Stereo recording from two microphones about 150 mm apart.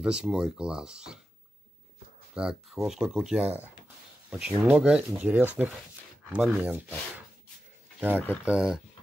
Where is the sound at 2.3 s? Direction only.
5° right (ahead or behind).